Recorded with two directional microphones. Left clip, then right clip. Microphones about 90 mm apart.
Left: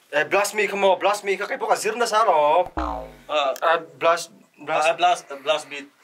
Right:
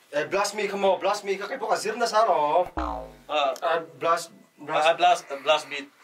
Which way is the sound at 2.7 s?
Centre (ahead or behind).